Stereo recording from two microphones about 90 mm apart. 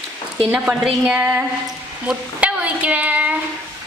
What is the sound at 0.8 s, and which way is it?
A woman's voice, 10° right (ahead or behind).